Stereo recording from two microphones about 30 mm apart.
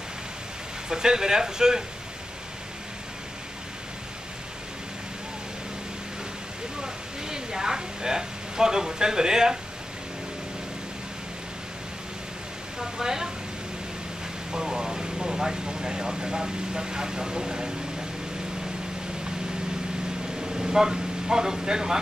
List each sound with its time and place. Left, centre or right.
0.8 s speech: right
6.8 s a sound: right
12.7 s speech: centre
14.5 s speech: right
20.4 s speech: centre